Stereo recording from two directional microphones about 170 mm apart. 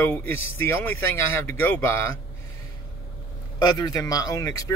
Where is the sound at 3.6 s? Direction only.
25° left (ahead or behind).